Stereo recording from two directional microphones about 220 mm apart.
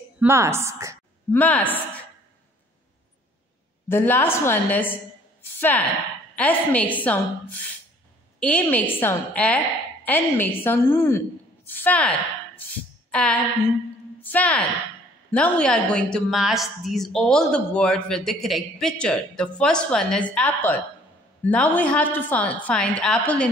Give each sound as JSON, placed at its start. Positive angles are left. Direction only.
{"t": 0.2, "sound": "a woman's voice", "side_deg": -10}
{"t": 1.3, "sound": "a woman's voice", "side_deg": 5}
{"t": 3.9, "sound": "a woman's voice", "side_deg": 10}
{"t": 8.4, "sound": "a woman's voice", "side_deg": 5}
{"t": 13.1, "sound": "a sound", "side_deg": 5}
{"t": 14.2, "sound": "a woman's voice", "side_deg": 5}